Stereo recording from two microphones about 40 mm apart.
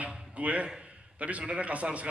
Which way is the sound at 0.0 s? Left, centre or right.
Right.